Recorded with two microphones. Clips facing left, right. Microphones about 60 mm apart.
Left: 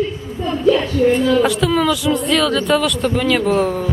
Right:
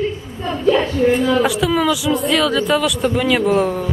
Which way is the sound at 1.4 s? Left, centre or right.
Centre.